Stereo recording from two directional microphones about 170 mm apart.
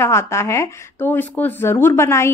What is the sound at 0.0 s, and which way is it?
A woman's voice, 15° left (ahead or behind).